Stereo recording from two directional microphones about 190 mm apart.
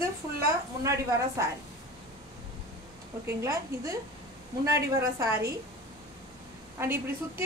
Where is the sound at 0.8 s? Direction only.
15° right (ahead or behind).